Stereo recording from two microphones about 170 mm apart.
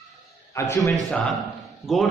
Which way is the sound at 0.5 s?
15° left (ahead or behind).